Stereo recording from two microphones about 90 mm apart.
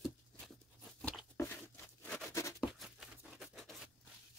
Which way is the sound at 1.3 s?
25° left (ahead or behind).